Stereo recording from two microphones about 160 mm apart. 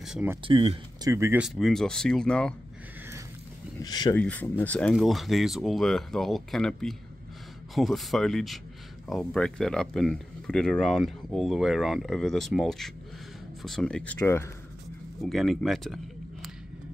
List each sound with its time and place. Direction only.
0.0 s a sound: 5° right (ahead or behind)
0.5 s speech: 35° right (ahead or behind)
1.1 s speech: 15° right (ahead or behind)
1.4 s speech: centre (ahead or behind)
3.8 s speech: 25° left (ahead or behind)
4.1 s speech: 10° left (ahead or behind)
15.2 s speech: centre (ahead or behind)